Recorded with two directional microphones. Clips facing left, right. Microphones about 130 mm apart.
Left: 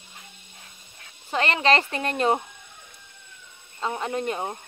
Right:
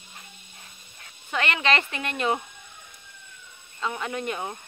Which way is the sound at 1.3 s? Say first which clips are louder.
Left 3 dB; 35° left (ahead or behind).